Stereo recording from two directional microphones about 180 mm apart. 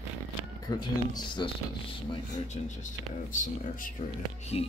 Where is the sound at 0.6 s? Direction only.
25° left (ahead or behind).